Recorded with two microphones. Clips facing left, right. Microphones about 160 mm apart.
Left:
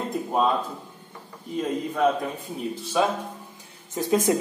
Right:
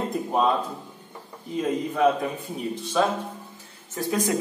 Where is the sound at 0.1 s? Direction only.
Centre (ahead or behind).